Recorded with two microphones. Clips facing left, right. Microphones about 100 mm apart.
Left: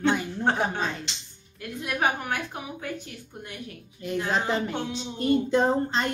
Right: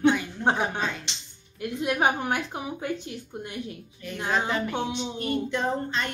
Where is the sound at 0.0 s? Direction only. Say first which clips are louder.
Right 2 dB; 15° right (ahead or behind).